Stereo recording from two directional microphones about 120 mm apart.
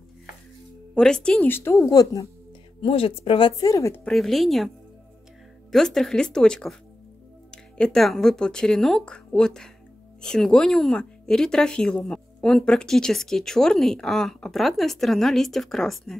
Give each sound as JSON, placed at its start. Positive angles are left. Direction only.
{"t": 0.9, "sound": "speech", "side_deg": 5}
{"t": 1.9, "sound": "speech", "side_deg": 30}
{"t": 2.8, "sound": "speech", "side_deg": 50}
{"t": 3.7, "sound": "speech", "side_deg": 25}
{"t": 4.0, "sound": "speech", "side_deg": 0}
{"t": 5.7, "sound": "speech", "side_deg": 5}